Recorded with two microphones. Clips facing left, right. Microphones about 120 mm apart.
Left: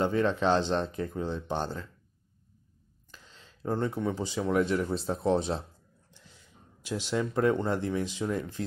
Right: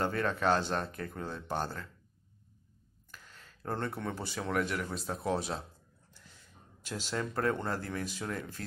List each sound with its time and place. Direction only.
0.0 s speech: 20° left (ahead or behind)
3.1 s a sound: 20° left (ahead or behind)
4.3 s speech: 15° left (ahead or behind)
4.6 s speech: 30° left (ahead or behind)
6.8 s speech: 15° left (ahead or behind)